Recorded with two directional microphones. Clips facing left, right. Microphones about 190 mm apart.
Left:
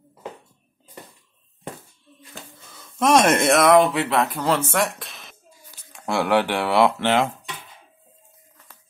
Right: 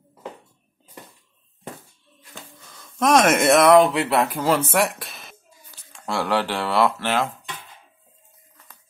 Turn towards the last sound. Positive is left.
turn(degrees=20)  # may be behind; listen again after turning